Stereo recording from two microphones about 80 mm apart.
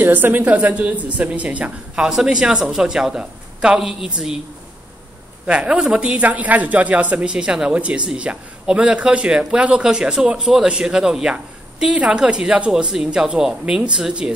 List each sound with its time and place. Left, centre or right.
0.0 s speech: right; by 4.4 s centre
5.5 s speech: centre